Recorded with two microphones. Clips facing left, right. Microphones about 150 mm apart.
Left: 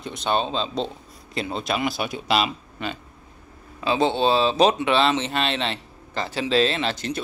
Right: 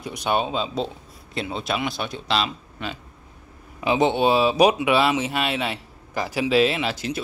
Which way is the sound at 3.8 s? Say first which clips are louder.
Right 1 dB; 15° right (ahead or behind).